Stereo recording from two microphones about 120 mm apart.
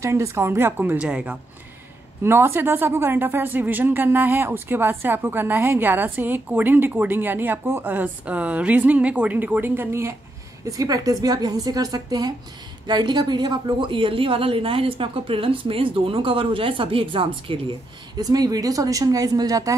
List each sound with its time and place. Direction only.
0.0 s a woman's voice: 25° right (ahead or behind)
2.2 s a woman's voice: 20° right (ahead or behind)
10.6 s a woman's voice: 30° right (ahead or behind)